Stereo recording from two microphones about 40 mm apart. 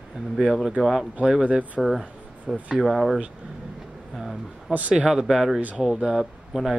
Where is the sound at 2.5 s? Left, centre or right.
Centre.